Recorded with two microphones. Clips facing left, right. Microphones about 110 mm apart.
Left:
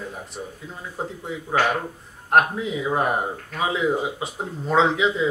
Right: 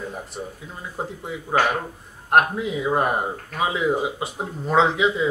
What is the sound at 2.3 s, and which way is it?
Speech, 5° right (ahead or behind).